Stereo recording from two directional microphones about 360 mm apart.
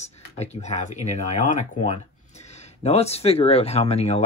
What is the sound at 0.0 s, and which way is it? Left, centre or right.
Speech, centre.